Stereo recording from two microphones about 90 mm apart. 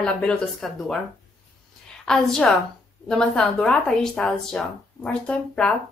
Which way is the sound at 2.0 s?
5° left (ahead or behind).